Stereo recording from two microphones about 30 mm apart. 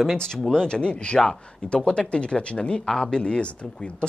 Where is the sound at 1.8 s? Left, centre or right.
Left.